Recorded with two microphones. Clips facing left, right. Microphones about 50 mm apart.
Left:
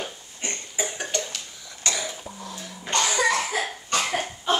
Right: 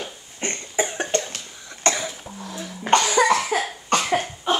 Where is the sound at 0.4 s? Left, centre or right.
Right.